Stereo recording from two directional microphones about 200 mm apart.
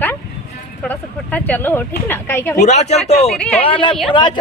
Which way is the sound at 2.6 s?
35° left (ahead or behind).